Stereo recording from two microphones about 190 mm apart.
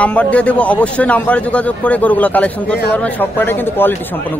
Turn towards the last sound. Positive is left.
turn(degrees=10)  # may be behind; listen again after turning